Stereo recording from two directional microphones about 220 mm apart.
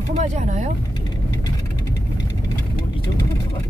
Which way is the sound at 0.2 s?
35° right (ahead or behind).